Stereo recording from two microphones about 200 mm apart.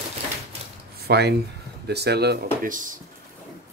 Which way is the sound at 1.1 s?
55° right (ahead or behind).